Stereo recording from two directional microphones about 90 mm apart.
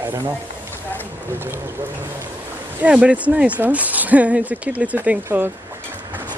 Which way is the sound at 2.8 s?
10° right (ahead or behind).